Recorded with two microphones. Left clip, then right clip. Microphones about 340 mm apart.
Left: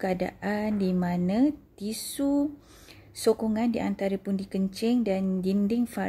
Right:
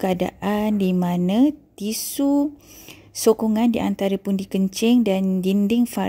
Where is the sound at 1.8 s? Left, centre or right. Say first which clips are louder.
Right 7 dB; centre.